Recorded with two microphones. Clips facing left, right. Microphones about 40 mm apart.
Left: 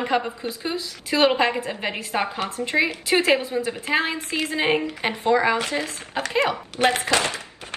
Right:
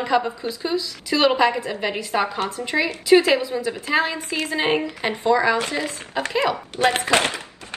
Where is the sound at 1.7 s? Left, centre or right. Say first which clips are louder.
Right 3 dB; left.